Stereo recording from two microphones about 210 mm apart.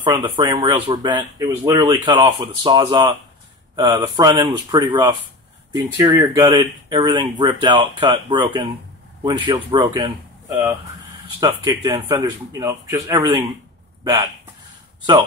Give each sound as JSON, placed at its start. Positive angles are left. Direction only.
{"t": 0.0, "sound": "speech", "side_deg": -20}
{"t": 11.3, "sound": "speech", "side_deg": -20}